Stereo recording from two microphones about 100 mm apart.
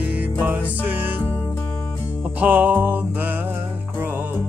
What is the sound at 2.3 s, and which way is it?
Music, 15° right (ahead or behind).